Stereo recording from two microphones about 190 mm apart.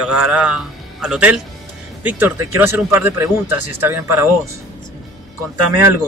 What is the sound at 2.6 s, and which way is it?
Speech, 15° right (ahead or behind).